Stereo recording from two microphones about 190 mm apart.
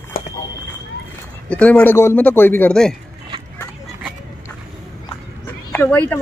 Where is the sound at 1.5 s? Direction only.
5° left (ahead or behind).